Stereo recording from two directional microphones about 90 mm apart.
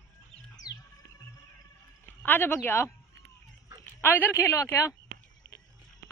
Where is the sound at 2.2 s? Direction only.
20° left (ahead or behind).